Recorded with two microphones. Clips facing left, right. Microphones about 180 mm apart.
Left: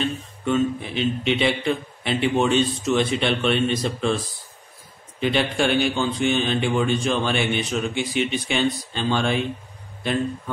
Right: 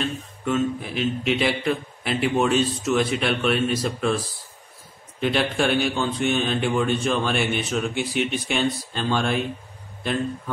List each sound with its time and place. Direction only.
0.0 s speech: centre (ahead or behind)
5.2 s speech: centre (ahead or behind)